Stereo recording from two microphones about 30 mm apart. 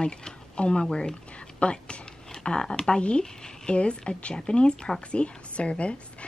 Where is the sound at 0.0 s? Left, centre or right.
Left.